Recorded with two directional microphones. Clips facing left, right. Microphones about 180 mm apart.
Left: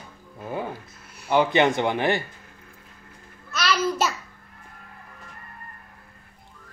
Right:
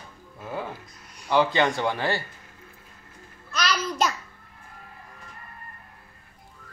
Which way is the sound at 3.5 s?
5° left (ahead or behind).